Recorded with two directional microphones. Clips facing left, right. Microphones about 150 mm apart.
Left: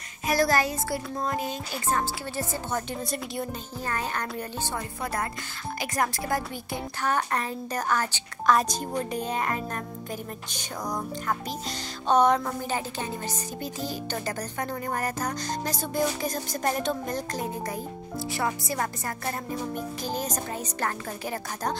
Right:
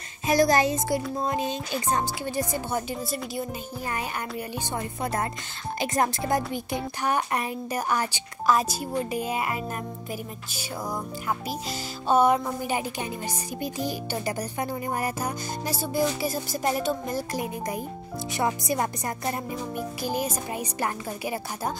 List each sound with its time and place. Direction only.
0.3 s speech: 20° right (ahead or behind)
2.9 s a woman's voice: 5° right (ahead or behind)